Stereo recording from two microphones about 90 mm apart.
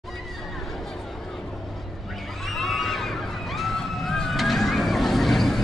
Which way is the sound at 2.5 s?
Centre (ahead or behind).